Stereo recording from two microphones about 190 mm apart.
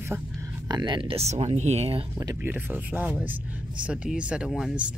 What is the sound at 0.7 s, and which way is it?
Speech, 25° right (ahead or behind).